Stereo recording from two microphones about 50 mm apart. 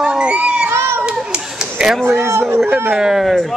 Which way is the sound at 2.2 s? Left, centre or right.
Right.